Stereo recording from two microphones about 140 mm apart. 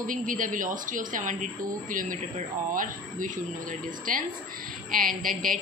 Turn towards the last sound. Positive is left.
turn(degrees=-80)